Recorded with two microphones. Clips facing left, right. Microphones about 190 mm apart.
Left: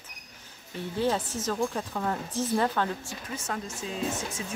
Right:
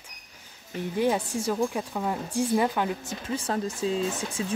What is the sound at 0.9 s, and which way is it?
A woman's voice, 15° right (ahead or behind).